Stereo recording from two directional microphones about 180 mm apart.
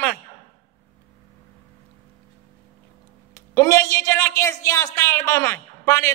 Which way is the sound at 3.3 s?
15° left (ahead or behind).